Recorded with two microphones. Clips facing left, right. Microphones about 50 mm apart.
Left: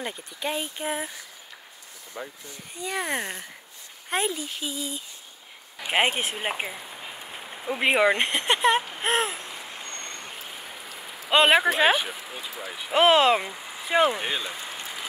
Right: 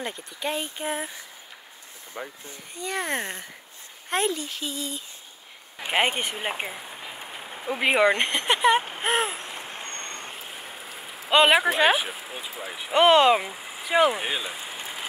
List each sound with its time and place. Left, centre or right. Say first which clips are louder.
0.0 s speech: even; centre
2.2 s speech: right 1 dB; right
2.7 s speech: even; centre
9.4 s a sound: right 2 dB; right
11.2 s speech: even; centre
12.2 s speech: right 1 dB; centre
12.9 s speech: right 1 dB; centre